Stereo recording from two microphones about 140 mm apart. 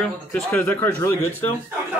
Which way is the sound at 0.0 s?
5° left (ahead or behind).